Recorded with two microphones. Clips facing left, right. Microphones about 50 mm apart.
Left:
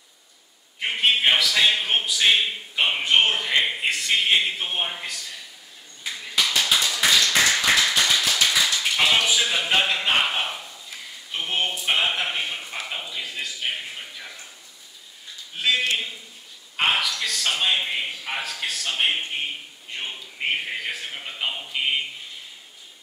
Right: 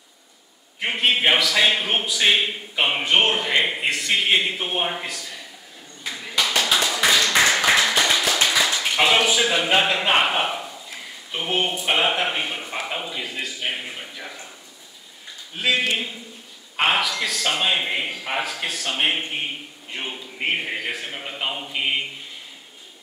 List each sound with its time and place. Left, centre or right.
0.7 s a man's voice: centre
6.0 s clapping: centre
7.1 s clapping: right
8.3 s tap: right
8.9 s a man's voice: centre
11.3 s a man's voice: centre
15.5 s a man's voice: centre